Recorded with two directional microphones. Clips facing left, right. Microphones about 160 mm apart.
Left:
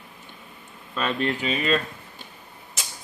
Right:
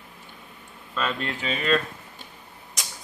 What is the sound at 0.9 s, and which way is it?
Speech, 15° left (ahead or behind).